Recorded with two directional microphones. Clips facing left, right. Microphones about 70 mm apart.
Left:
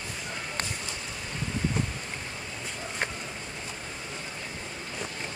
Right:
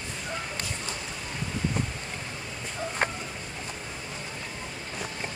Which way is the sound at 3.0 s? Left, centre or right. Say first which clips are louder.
Right 4 dB; right.